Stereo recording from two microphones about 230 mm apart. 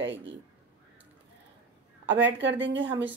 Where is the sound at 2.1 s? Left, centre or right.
Right.